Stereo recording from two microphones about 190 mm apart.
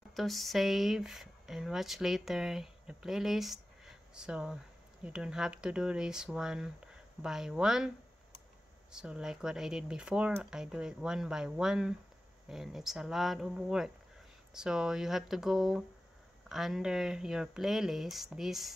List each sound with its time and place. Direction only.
0.1 s speech: centre (ahead or behind)
8.9 s speech: 5° right (ahead or behind)